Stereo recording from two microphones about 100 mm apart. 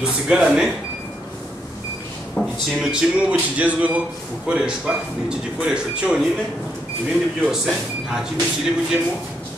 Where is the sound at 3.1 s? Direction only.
15° right (ahead or behind).